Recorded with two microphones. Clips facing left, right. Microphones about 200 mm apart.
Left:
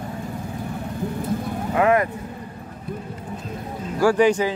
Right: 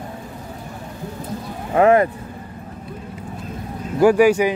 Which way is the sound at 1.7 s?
35° right (ahead or behind).